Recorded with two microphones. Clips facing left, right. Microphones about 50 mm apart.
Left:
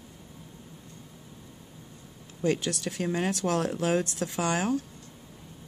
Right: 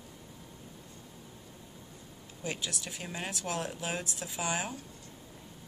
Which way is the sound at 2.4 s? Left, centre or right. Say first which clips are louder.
Left 10 dB; left.